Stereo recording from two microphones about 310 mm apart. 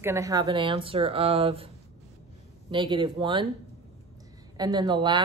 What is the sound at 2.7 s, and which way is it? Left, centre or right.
Speech, centre.